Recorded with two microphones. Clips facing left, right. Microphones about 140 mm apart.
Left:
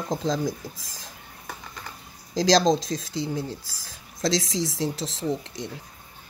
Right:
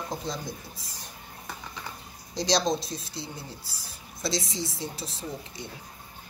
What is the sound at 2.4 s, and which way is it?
Speech, 90° left.